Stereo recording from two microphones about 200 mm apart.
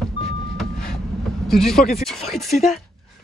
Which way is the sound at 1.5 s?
Centre (ahead or behind).